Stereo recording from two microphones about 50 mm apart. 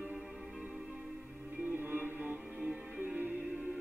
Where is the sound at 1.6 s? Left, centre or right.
Right.